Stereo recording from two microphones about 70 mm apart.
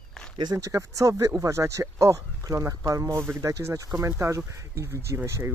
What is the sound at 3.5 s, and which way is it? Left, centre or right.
Speech, right.